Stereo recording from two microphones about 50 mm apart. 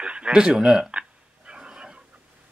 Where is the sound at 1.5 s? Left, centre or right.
Centre.